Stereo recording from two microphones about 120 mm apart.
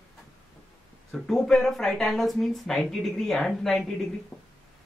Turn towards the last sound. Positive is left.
turn(degrees=30)  # may be behind; listen again after turning